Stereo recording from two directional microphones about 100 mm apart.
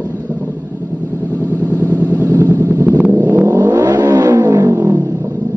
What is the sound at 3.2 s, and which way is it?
Vehicle, 15° right (ahead or behind).